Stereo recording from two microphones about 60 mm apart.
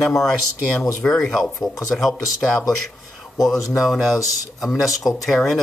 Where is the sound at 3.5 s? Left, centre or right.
Left.